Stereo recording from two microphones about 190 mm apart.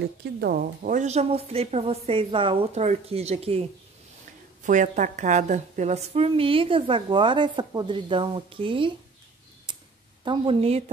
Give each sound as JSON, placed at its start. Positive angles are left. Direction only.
{"t": 0.0, "sound": "speech", "side_deg": -55}
{"t": 4.6, "sound": "a woman's voice", "side_deg": -40}
{"t": 9.7, "sound": "tick", "side_deg": -25}
{"t": 10.2, "sound": "a woman's voice", "side_deg": -25}